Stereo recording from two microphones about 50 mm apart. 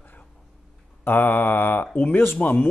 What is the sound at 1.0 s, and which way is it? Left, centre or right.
Mantra, left.